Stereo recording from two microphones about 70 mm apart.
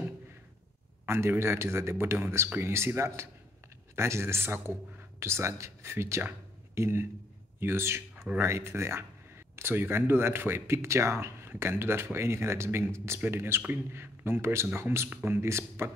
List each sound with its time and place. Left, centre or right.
1.0 s speech: right